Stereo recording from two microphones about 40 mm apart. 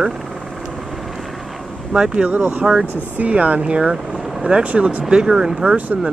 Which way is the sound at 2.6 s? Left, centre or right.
Centre.